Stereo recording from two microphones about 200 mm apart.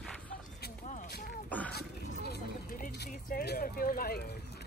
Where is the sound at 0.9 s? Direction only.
45° left (ahead or behind).